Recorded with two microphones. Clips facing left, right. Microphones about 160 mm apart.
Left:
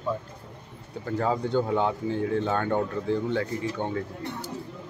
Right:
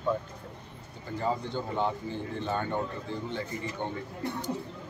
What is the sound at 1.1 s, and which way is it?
Speech, 80° left.